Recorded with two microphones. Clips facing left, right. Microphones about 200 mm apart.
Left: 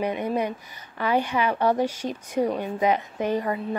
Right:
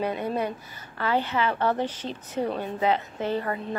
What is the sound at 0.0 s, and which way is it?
A woman's voice, 15° left (ahead or behind).